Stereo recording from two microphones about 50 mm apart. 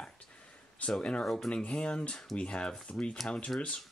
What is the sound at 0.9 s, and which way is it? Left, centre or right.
Speech, centre.